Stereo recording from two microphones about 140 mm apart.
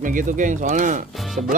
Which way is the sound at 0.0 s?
70° right (ahead or behind).